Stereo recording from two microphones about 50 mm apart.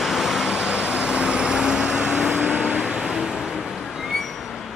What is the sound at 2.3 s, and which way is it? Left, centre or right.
Vehicle, right.